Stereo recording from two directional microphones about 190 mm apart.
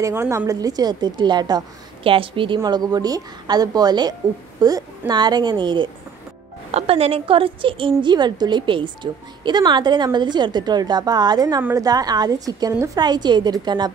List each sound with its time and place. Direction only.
0.0 s a woman's voice: 15° right (ahead or behind)